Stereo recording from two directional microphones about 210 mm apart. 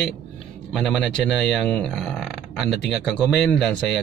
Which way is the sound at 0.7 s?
Centre (ahead or behind).